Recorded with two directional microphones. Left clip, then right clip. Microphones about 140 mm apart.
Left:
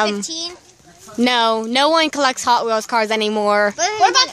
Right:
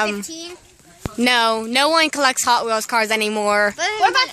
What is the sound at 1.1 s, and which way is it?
Speech, 10° left (ahead or behind).